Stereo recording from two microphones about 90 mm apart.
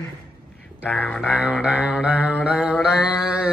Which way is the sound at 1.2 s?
15° right (ahead or behind).